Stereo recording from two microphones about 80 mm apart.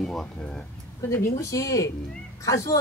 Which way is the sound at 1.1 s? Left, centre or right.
Left.